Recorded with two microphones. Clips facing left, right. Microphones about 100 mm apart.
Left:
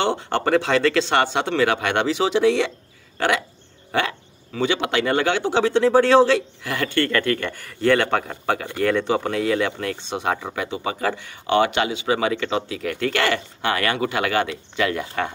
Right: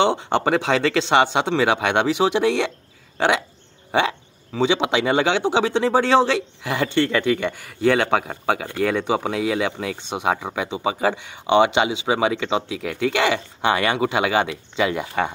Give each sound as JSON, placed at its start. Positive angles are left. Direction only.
{"t": 0.0, "sound": "speech", "side_deg": -15}
{"t": 4.6, "sound": "speech", "side_deg": -20}